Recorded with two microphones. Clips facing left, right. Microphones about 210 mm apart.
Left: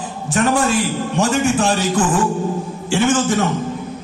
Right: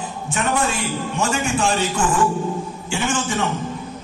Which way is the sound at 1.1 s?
40° left (ahead or behind).